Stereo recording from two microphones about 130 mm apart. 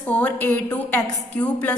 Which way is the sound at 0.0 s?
10° left (ahead or behind).